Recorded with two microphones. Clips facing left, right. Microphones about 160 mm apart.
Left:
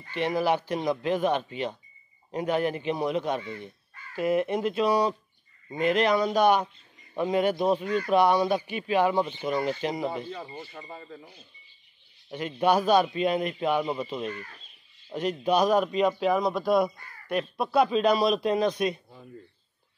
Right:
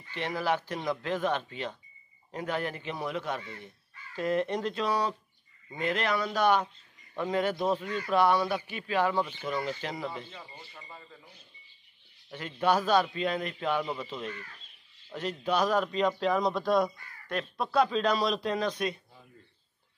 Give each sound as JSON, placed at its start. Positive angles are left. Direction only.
{"t": 0.1, "sound": "a man's voice", "side_deg": 15}
{"t": 4.1, "sound": "speech", "side_deg": 10}
{"t": 12.3, "sound": "speech", "side_deg": 15}